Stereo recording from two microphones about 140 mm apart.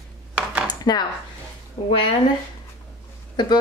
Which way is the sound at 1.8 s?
30° left (ahead or behind).